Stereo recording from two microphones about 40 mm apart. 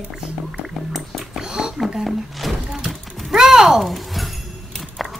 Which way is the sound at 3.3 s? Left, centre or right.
Centre.